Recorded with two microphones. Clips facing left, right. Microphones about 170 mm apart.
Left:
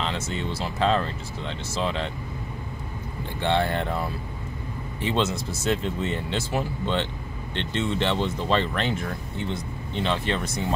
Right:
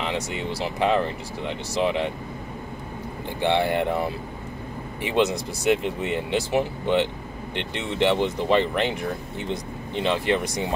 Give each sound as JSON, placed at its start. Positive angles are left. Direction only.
{"t": 0.0, "sound": "speech", "side_deg": -15}
{"t": 3.3, "sound": "speech", "side_deg": -15}